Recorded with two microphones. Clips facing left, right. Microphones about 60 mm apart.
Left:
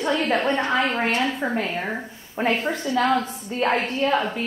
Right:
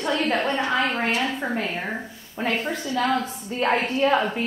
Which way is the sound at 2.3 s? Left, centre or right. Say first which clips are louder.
Left 3 dB; centre.